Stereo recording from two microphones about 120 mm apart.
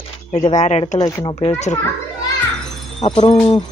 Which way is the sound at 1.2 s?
45° left (ahead or behind).